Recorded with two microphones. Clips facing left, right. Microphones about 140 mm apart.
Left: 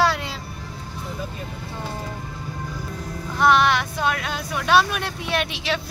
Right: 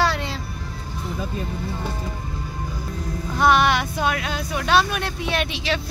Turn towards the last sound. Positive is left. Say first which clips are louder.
# right 1 dB
turn(degrees=0)  # may be behind; listen again after turning